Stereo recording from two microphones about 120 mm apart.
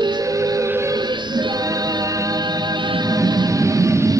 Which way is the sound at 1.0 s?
40° right (ahead or behind).